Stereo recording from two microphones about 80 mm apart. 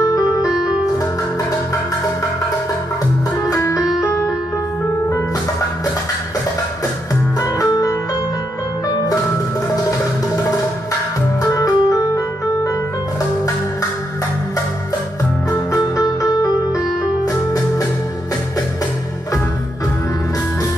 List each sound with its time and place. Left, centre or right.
0.0 s music: left
7.6 s music: left
11.5 s organ: left
15.7 s music: left